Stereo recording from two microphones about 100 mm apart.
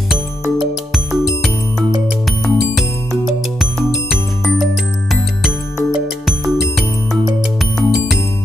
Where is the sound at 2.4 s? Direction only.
Centre (ahead or behind).